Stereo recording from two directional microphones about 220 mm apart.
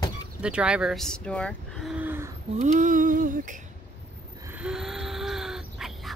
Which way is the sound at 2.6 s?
35° right (ahead or behind).